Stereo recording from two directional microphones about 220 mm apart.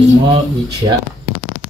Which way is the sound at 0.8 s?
20° right (ahead or behind).